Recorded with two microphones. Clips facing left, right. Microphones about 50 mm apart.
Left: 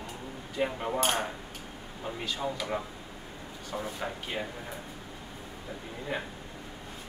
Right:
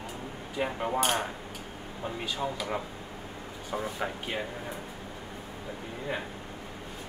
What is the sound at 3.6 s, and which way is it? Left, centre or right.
Speech, centre.